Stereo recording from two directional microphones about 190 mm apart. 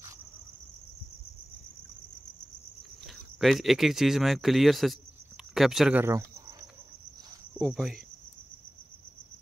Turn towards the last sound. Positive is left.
turn(degrees=0)  # may be behind; listen again after turning